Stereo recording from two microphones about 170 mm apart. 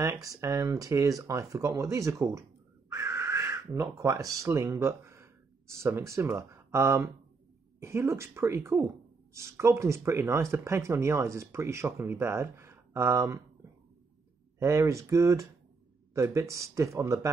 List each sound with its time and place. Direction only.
0.4 s speech: 20° right (ahead or behind)
14.6 s speech: 15° right (ahead or behind)